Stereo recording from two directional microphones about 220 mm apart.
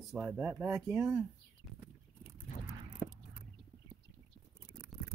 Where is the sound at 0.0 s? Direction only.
5° right (ahead or behind).